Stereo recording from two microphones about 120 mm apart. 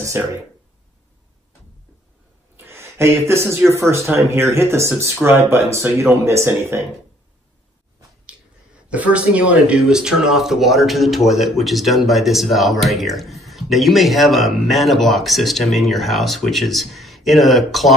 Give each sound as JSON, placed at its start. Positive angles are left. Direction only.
{"t": 0.2, "sound": "speech", "side_deg": -20}
{"t": 2.5, "sound": "a sound", "side_deg": -20}
{"t": 3.7, "sound": "speech", "side_deg": -20}
{"t": 8.8, "sound": "speech", "side_deg": -10}